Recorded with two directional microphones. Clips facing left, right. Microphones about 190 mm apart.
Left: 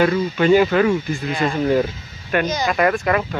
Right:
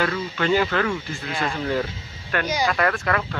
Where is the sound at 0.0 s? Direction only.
15° left (ahead or behind).